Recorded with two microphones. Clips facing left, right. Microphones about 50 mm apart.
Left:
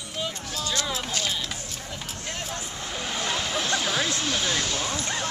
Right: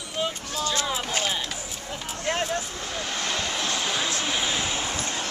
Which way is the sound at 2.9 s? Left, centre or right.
Centre.